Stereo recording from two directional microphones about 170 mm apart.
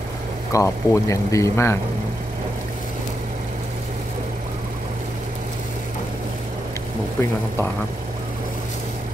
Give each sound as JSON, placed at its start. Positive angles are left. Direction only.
{"t": 0.5, "sound": "speech", "side_deg": 20}